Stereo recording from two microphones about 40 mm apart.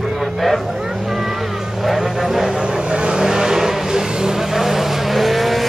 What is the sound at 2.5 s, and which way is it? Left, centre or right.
Vehicle, centre.